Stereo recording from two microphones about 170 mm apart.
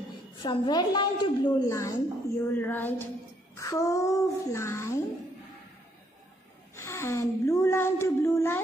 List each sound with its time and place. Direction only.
0.4 s a woman's voice: 25° left (ahead or behind)
6.7 s speech: 15° left (ahead or behind)